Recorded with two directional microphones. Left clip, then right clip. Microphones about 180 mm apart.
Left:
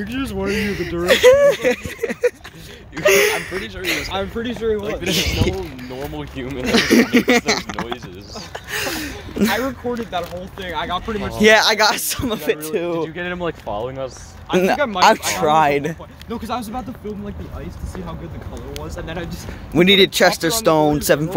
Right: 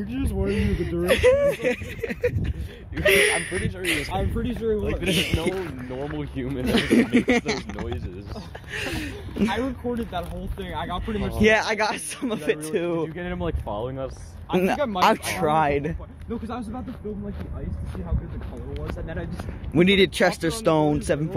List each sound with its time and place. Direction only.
0.0 s speech: 10° left (ahead or behind)
1.3 s speech: 25° left (ahead or behind)
4.1 s speech: 50° right (ahead or behind)
5.1 s speech: 10° left (ahead or behind)
6.3 s speech: 50° right (ahead or behind)
6.7 s speech: 10° left (ahead or behind); by 8.0 s 30° left (ahead or behind)
8.7 s speech: 10° left (ahead or behind)
9.8 s speech: 50° right (ahead or behind)
11.4 s speech: 15° left (ahead or behind); by 13.4 s 15° right (ahead or behind)
13.4 s speech: 35° right (ahead or behind)
14.5 s speech: 10° left (ahead or behind)
15.0 s speech: centre (ahead or behind)
16.3 s speech: 40° left (ahead or behind)
19.7 s speech: 10° left (ahead or behind)